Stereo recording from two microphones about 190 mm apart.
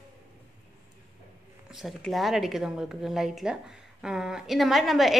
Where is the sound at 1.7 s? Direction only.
Centre (ahead or behind).